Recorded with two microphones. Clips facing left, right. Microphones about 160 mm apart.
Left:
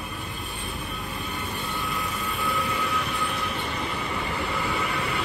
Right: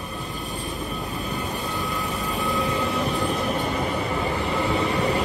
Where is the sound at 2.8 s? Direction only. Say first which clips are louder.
Right 5 dB; 35° right (ahead or behind).